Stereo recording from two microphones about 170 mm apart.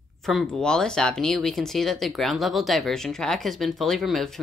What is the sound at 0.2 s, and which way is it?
Speech, centre (ahead or behind).